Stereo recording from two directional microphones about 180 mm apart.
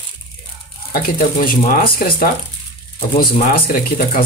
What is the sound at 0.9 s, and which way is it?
Speech, 55° left (ahead or behind).